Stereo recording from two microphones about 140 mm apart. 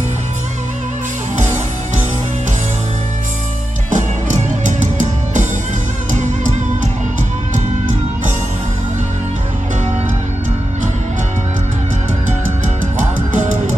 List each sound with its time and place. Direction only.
3.9 s music: 65° right (ahead or behind)
6.1 s music: 60° right (ahead or behind)